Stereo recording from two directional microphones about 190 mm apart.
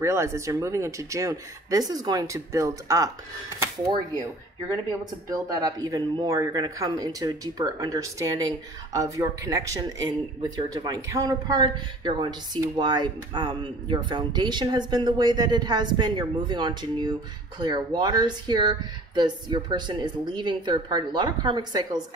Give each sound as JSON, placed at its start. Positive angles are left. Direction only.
{"t": 0.0, "sound": "speech", "side_deg": -15}
{"t": 5.3, "sound": "speech", "side_deg": -20}